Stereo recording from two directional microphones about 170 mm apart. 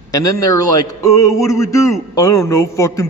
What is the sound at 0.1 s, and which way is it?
A man's voice, 20° left (ahead or behind).